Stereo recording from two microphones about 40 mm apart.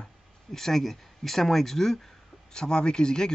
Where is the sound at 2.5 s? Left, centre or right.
Centre.